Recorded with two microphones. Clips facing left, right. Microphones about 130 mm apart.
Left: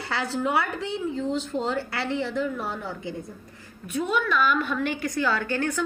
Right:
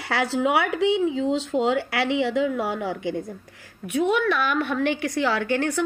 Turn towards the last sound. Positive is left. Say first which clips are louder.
# right 3 dB
turn(degrees=-70)  # may be behind; listen again after turning